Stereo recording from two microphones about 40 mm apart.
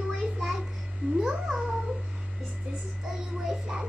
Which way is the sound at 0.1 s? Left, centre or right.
Centre.